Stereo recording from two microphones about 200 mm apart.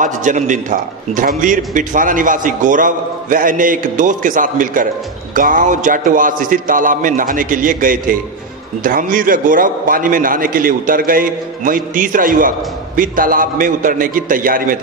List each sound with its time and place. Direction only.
0.0 s a man's voice: 40° right (ahead or behind)